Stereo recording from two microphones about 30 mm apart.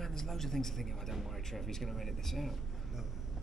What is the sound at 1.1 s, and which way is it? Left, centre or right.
Speech, centre.